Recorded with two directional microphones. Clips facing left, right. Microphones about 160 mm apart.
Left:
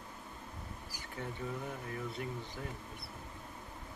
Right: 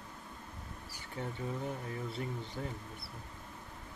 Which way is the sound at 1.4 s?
25° right (ahead or behind).